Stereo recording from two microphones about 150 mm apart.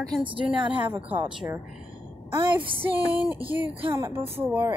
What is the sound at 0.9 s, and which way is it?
Speech, 10° right (ahead or behind).